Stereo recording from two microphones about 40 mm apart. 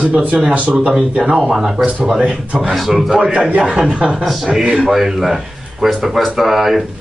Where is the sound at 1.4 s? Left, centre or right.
Centre.